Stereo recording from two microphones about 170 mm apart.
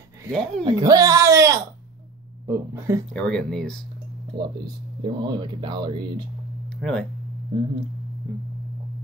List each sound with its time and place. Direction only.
0.3 s speech: 5° left (ahead or behind)
0.7 s speech: 25° right (ahead or behind)
3.1 s speech: 5° left (ahead or behind)
4.4 s speech: 25° right (ahead or behind)
6.8 s speech: 5° left (ahead or behind)